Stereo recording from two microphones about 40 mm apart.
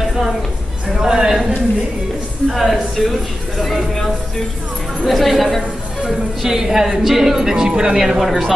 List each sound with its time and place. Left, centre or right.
1.0 s a sound: centre
2.5 s speech: centre
6.0 s speech: centre
7.9 s speech: centre